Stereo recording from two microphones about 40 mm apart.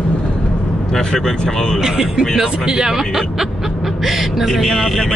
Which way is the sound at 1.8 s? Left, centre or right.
Centre.